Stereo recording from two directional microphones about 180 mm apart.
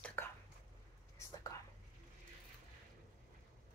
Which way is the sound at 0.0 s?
10° left (ahead or behind).